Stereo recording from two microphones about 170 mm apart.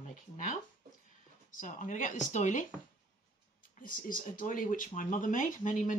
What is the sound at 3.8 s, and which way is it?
Speech, 55° left (ahead or behind).